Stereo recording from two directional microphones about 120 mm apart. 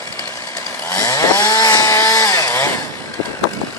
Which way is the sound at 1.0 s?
30° left (ahead or behind).